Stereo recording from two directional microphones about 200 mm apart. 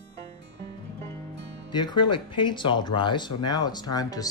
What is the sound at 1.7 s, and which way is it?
Speech, 20° left (ahead or behind).